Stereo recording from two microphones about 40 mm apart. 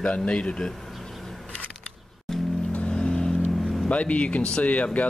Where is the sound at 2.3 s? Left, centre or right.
Centre.